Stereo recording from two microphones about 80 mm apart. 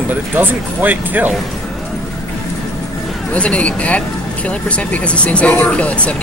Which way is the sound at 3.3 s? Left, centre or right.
Centre.